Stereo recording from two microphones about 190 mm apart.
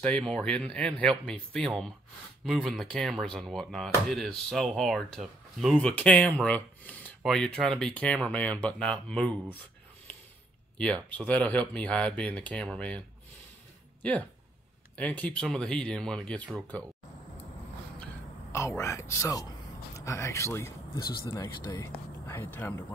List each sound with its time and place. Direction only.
0.0 s speech: 5° left (ahead or behind)
10.8 s speech: 5° left (ahead or behind)
15.0 s speech: 5° left (ahead or behind)
17.9 s a sound: 10° left (ahead or behind)
20.1 s speech: 15° left (ahead or behind)